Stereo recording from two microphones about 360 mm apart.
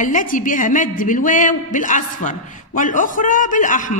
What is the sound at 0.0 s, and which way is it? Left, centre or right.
A woman's voice, left.